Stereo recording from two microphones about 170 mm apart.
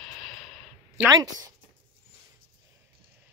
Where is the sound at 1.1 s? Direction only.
20° right (ahead or behind).